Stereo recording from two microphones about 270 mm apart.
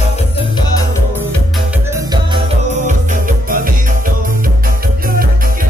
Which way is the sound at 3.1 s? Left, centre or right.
Right.